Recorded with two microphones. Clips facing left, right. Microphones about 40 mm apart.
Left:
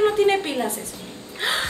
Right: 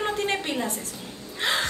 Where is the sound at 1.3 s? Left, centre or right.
Centre.